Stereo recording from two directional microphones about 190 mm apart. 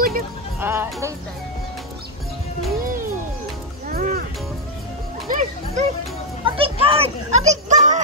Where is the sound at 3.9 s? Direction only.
50° right (ahead or behind).